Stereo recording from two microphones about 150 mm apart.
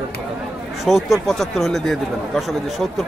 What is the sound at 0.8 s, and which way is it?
Speech, centre (ahead or behind).